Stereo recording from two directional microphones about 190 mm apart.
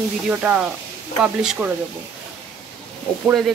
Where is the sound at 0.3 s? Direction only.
10° right (ahead or behind).